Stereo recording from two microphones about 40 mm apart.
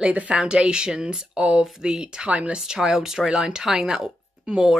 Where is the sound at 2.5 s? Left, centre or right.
Centre.